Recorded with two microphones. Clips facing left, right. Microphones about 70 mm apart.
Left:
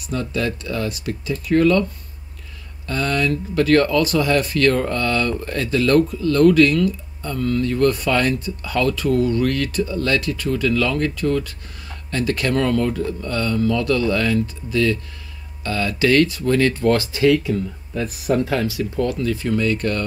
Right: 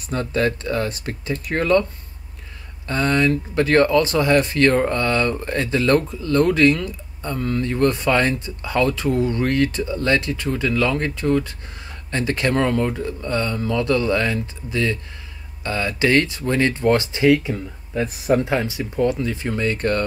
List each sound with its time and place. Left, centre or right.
0.1 s speech: right
2.9 s speech: right